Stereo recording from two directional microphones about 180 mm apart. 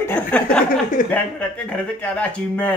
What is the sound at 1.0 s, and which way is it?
Speech, 50° left (ahead or behind).